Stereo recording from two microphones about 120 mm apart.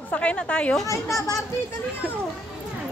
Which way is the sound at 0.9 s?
25° left (ahead or behind).